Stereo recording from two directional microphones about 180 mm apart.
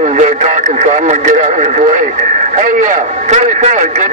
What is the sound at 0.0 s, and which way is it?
Speech, 40° right (ahead or behind).